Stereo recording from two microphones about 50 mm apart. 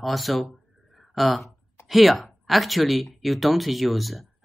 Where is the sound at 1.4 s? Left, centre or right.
Left.